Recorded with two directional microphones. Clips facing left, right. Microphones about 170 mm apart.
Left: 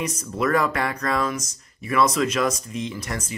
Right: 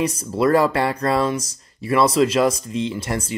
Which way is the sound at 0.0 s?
30° right (ahead or behind).